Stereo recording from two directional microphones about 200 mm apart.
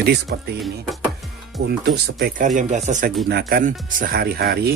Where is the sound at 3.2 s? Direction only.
50° right (ahead or behind).